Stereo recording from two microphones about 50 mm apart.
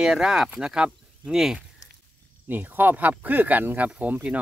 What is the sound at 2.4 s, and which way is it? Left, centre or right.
Speech, right.